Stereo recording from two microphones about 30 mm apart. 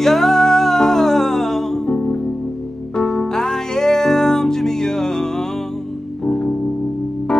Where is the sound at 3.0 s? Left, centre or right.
Centre.